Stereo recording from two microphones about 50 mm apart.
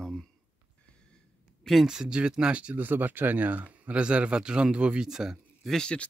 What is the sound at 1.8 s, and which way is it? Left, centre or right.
Speech, centre.